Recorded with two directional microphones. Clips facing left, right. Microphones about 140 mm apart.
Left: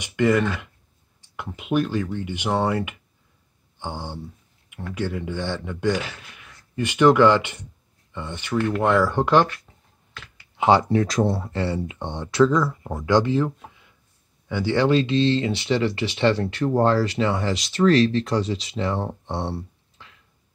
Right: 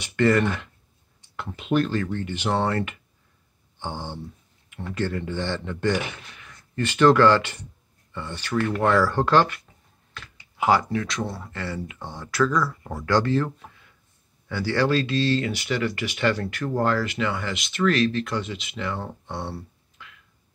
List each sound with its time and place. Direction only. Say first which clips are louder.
0.0 s speech: even; 10° left (ahead or behind)
10.6 s speech: left 4 dB; 30° left (ahead or behind)